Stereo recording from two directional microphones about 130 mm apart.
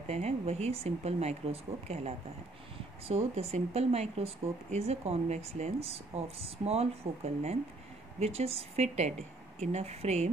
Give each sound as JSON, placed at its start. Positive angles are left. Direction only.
{"t": 0.1, "sound": "speech", "side_deg": -55}
{"t": 8.2, "sound": "speech", "side_deg": -50}